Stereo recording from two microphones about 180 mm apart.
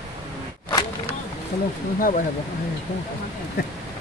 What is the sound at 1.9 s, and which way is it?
Speech, 50° left (ahead or behind).